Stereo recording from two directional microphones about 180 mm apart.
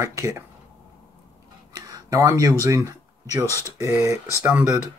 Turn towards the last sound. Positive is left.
turn(degrees=-10)  # may be behind; listen again after turning